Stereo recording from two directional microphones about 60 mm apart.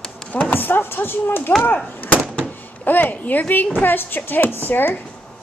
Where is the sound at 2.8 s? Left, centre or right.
Left.